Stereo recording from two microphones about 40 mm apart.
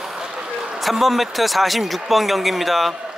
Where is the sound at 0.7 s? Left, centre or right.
Centre.